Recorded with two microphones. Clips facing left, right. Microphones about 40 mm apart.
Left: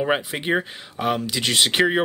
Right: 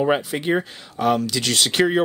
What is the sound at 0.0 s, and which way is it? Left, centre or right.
Speech, centre.